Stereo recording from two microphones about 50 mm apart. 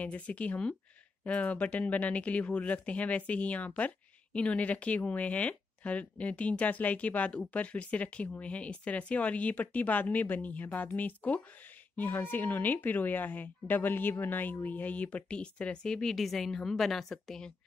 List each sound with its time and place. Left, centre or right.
0.0 s a woman's voice: left; by 17.5 s centre